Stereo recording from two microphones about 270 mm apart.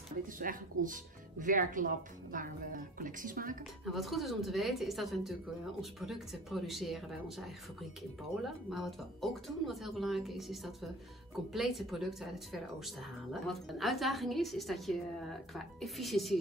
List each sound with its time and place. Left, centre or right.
0.5 s a woman's voice: right
3.8 s speech: centre